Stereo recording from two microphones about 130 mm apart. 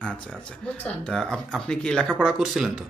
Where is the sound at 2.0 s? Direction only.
5° right (ahead or behind).